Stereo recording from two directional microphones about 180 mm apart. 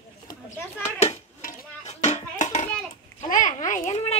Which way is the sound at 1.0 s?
40° left (ahead or behind).